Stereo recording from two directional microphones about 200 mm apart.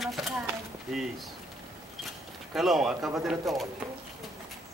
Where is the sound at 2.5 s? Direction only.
Centre (ahead or behind).